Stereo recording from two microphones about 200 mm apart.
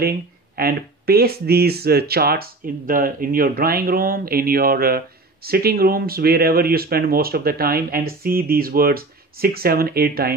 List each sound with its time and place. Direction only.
0.6 s speech: 50° right (ahead or behind)